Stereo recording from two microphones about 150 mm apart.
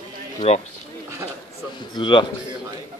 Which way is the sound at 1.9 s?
30° left (ahead or behind).